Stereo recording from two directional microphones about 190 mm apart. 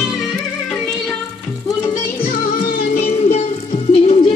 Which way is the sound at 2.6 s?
50° left (ahead or behind).